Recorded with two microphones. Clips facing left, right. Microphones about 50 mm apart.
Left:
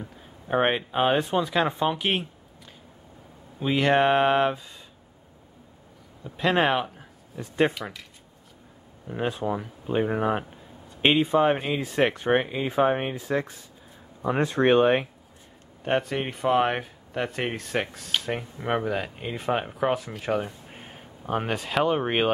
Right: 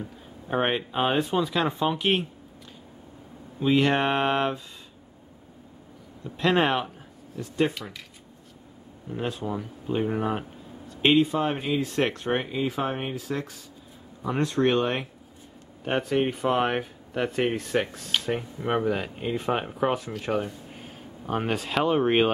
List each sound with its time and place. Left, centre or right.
0.0 s speech: centre
3.5 s speech: centre
6.2 s speech: centre
9.1 s speech: centre
15.8 s speech: centre
20.7 s a sound: left
21.3 s speech: centre